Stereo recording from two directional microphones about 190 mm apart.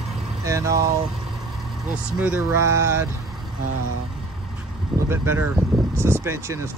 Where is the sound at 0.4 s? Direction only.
15° right (ahead or behind).